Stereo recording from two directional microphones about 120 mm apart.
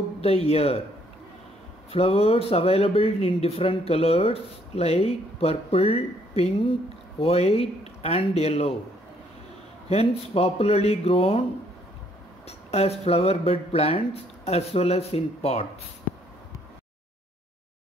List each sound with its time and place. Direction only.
0.2 s speech: 55° left (ahead or behind)
1.9 s speech: 55° left (ahead or behind)
9.8 s speech: 55° left (ahead or behind)
12.4 s speech: 60° left (ahead or behind)